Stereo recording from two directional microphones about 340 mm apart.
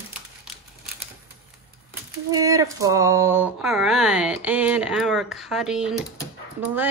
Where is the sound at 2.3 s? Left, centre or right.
Centre.